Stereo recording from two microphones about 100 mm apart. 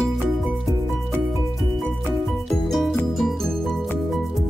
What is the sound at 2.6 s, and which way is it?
Music, centre (ahead or behind).